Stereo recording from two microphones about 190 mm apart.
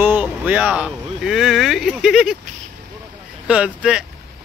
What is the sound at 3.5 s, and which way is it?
Speech, 5° right (ahead or behind).